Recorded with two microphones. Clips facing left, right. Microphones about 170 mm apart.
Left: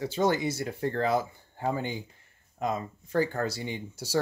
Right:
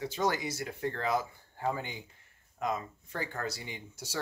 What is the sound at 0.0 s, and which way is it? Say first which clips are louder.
Speech: left 5 dB; 30° left (ahead or behind).